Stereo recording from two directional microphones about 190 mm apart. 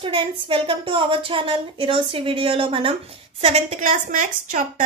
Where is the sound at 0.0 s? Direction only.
25° right (ahead or behind).